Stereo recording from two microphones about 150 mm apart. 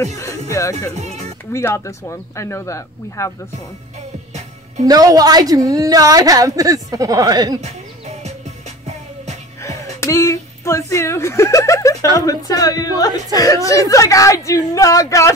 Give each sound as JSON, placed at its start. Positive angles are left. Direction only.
{"t": 0.5, "sound": "speech", "side_deg": 20}
{"t": 0.9, "sound": "music", "side_deg": -50}
{"t": 1.5, "sound": "speech", "side_deg": 15}
{"t": 4.8, "sound": "a woman's voice", "side_deg": -25}
{"t": 8.8, "sound": "music", "side_deg": -50}
{"t": 9.6, "sound": "speech", "side_deg": 20}